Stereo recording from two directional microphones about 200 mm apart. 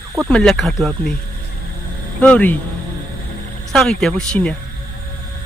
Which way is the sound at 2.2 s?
5° left (ahead or behind).